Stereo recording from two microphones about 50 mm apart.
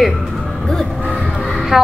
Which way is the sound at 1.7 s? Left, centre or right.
Centre.